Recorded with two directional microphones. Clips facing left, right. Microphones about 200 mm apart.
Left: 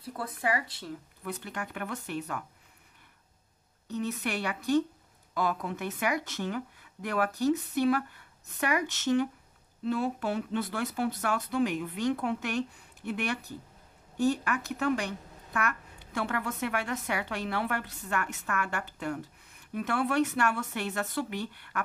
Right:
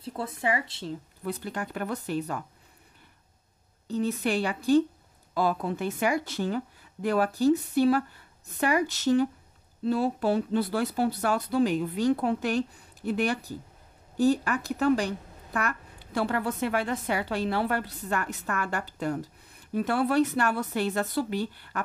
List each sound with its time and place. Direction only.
0.0 s a woman's voice: 25° right (ahead or behind)
3.8 s a woman's voice: 30° right (ahead or behind)